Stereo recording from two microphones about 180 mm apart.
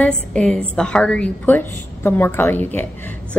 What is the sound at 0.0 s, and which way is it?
A woman's voice, 5° left (ahead or behind).